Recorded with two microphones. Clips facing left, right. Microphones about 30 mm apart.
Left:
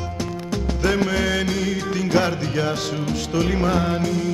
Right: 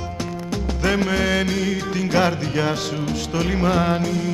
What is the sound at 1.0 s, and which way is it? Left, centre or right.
Music, centre.